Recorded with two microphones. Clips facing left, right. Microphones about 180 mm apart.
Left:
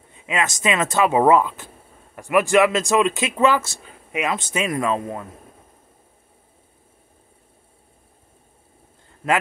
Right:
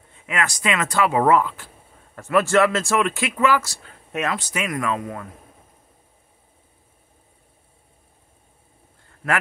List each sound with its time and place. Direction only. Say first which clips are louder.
0.1 s speech: left 2 dB; 20° left (ahead or behind)
4.1 s speech: left 1 dB; 15° left (ahead or behind)
4.4 s speech: left 3 dB; 25° left (ahead or behind)